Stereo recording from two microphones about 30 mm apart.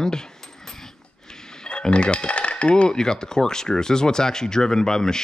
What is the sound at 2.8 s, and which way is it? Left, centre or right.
Speech, left.